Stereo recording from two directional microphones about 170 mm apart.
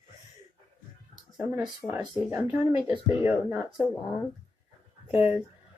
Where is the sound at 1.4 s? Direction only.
5° right (ahead or behind).